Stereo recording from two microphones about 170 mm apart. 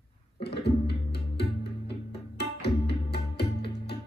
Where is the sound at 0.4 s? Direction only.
75° left (ahead or behind).